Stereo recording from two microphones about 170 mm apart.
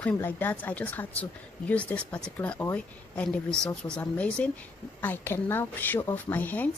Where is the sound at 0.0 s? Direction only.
10° left (ahead or behind).